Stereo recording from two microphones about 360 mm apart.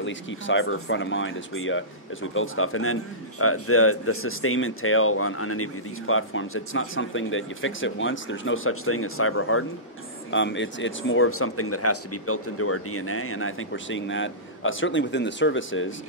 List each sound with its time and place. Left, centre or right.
0.0 s a man's voice: left